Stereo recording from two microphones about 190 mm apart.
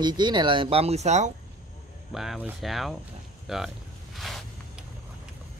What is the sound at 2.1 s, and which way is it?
Speech, centre (ahead or behind).